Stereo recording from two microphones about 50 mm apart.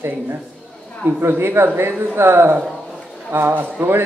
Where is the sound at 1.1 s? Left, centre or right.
Right.